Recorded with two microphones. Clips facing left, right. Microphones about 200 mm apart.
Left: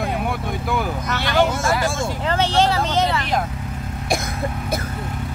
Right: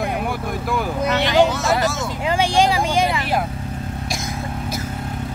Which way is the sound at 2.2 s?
10° right (ahead or behind).